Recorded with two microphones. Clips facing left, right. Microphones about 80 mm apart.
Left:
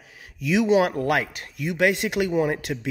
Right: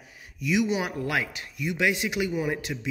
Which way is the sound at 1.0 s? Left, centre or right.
Left.